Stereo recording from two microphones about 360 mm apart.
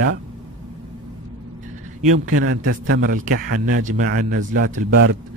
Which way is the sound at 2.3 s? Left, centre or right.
Right.